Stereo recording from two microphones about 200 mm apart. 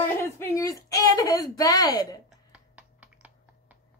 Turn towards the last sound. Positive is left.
turn(degrees=-5)  # may be behind; listen again after turning